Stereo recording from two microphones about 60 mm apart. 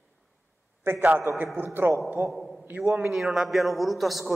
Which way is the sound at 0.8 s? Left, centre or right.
Right.